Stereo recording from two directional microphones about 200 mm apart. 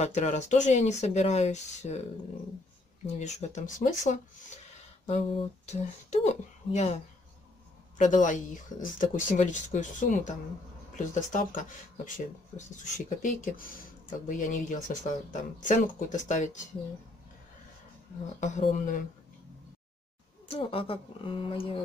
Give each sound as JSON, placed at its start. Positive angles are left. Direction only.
{"t": 0.0, "sound": "speech", "side_deg": 35}
{"t": 3.2, "sound": "speech", "side_deg": 35}
{"t": 8.0, "sound": "speech", "side_deg": 40}
{"t": 18.4, "sound": "speech", "side_deg": 40}
{"t": 20.4, "sound": "speech", "side_deg": 25}